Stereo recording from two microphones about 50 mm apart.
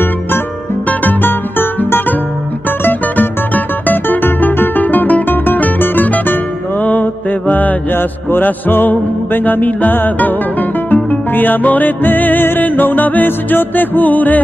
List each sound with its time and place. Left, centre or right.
0.8 s music: left